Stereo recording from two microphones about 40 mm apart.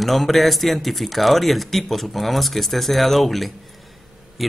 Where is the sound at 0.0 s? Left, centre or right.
Centre.